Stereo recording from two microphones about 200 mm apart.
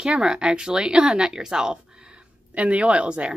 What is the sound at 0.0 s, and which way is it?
Speech, 5° right (ahead or behind).